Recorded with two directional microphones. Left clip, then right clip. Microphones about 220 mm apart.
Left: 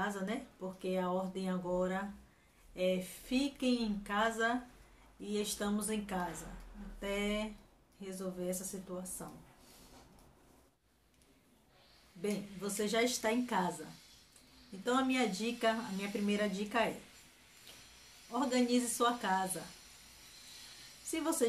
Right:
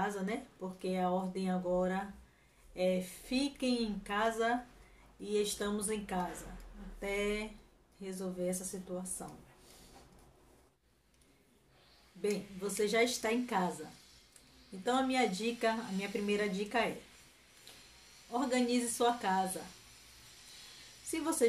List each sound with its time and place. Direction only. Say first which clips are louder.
0.0 s speech: right 2 dB; 10° left (ahead or behind)
12.2 s speech: right 3 dB; 10° left (ahead or behind)
14.9 s speech: right 1 dB; 10° left (ahead or behind)
18.5 s speech: even; 10° left (ahead or behind)
21.1 s speech: right 2 dB; 10° left (ahead or behind)